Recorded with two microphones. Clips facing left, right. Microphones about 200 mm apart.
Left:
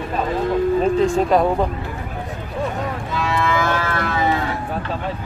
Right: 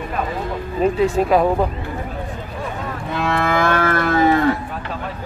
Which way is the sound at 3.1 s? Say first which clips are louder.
Right 2 dB; 55° right (ahead or behind).